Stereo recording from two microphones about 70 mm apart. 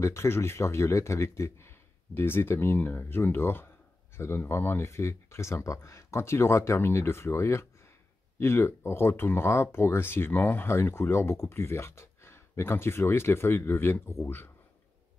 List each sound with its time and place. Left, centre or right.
0.0 s speech: left